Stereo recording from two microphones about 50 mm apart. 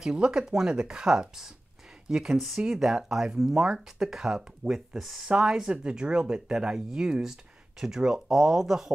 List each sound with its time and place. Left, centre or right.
0.0 s speech: centre